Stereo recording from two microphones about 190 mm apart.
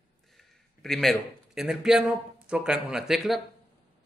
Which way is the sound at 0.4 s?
Centre (ahead or behind).